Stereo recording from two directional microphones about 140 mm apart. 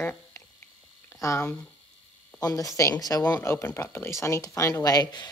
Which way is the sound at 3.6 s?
15° left (ahead or behind).